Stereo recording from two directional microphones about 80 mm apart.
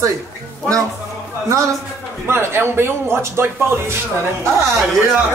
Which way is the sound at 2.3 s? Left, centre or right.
Right.